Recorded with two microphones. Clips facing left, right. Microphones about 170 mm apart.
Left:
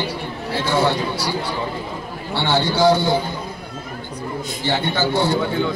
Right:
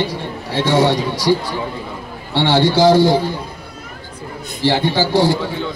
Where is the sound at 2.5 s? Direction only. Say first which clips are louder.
Right 4 dB; 90° right.